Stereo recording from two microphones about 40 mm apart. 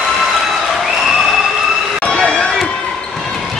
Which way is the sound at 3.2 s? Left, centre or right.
Centre.